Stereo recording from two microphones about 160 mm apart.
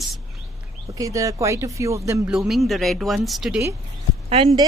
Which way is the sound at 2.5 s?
Centre (ahead or behind).